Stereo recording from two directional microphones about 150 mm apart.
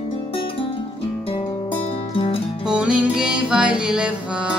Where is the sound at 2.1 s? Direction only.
40° left (ahead or behind).